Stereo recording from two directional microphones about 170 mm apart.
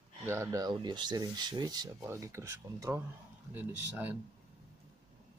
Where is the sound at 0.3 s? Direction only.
20° right (ahead or behind).